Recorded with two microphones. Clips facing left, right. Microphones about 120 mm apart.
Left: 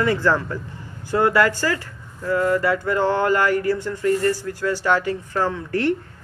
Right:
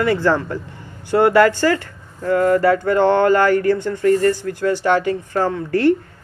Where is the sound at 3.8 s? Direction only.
50° right (ahead or behind).